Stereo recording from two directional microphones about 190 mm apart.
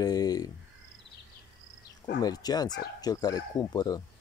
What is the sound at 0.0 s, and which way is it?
Speech, 20° left (ahead or behind).